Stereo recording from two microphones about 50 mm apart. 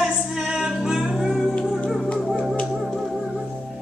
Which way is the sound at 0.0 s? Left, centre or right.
Centre.